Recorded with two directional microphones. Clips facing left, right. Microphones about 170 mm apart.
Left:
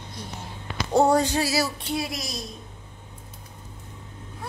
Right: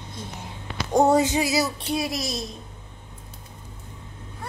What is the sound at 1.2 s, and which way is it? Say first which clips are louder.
Speech: right 2 dB; 20° right (ahead or behind).